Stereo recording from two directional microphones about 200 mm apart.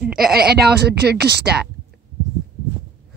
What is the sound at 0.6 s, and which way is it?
Speech, 55° right (ahead or behind).